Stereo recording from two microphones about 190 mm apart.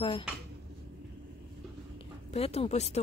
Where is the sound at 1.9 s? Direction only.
30° left (ahead or behind).